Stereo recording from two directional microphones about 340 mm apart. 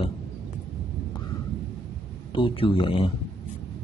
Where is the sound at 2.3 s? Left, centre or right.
Centre.